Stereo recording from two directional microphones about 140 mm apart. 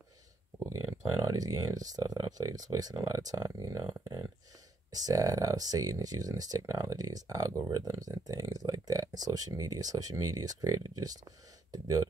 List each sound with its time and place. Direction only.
1.3 s speech: 25° right (ahead or behind)